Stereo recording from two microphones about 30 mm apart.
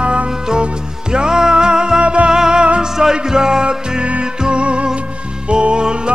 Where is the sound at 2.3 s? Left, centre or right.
Right.